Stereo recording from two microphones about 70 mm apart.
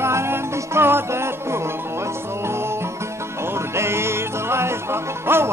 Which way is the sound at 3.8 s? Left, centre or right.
Right.